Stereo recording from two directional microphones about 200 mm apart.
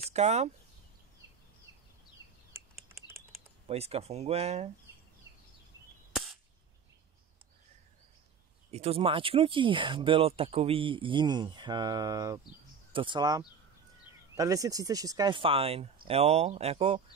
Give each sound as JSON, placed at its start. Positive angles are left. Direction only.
{"t": 0.1, "sound": "speech", "side_deg": -35}
{"t": 3.6, "sound": "speech", "side_deg": -30}
{"t": 8.7, "sound": "speech", "side_deg": -30}